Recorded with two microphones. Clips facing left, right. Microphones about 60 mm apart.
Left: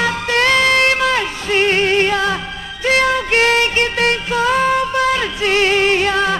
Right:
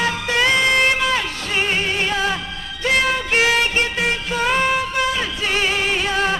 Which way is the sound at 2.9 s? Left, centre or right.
Left.